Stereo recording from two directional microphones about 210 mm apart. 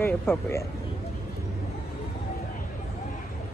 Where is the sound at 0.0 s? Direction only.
10° left (ahead or behind).